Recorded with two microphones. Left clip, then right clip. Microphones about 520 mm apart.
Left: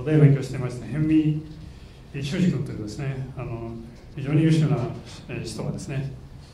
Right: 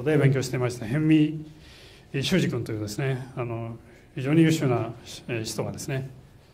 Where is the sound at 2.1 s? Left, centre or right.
Right.